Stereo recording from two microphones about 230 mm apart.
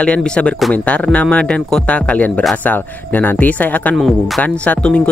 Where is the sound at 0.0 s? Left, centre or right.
Centre.